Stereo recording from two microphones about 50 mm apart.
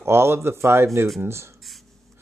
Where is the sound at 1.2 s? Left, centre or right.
Right.